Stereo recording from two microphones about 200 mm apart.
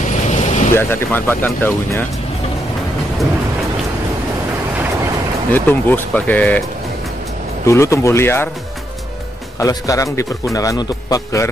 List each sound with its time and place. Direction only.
0.3 s vehicle: 35° left (ahead or behind)
0.7 s a man's voice: 10° left (ahead or behind)
5.5 s a man's voice: 10° left (ahead or behind)
7.6 s a man's voice: 15° left (ahead or behind)
9.6 s a man's voice: 15° left (ahead or behind)